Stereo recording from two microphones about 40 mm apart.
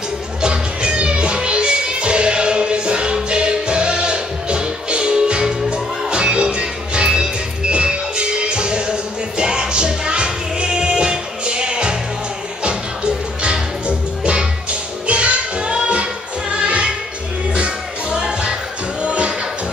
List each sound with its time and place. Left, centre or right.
0.4 s music: right